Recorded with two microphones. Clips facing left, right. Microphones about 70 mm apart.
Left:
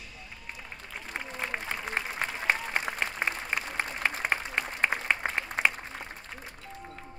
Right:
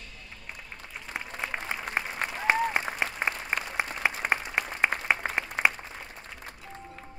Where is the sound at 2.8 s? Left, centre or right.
Centre.